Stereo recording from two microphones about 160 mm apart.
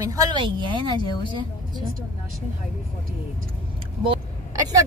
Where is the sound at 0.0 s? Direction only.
20° right (ahead or behind).